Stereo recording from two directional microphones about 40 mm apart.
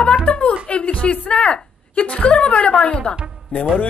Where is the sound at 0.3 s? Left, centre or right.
Left.